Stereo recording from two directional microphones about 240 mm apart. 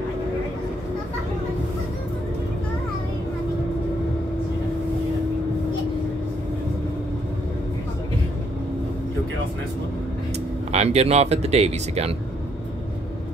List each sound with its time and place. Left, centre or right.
10.7 s speech: right